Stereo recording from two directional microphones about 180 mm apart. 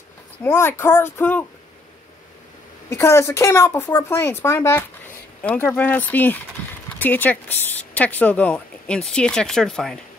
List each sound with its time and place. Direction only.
0.4 s speech: 10° left (ahead or behind)
2.9 s speech: 15° left (ahead or behind)